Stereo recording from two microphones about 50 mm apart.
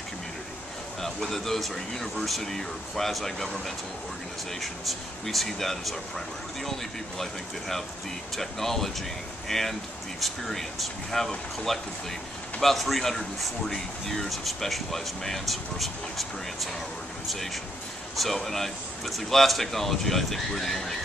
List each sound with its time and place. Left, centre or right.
1.0 s speech: centre
18.1 s speech: centre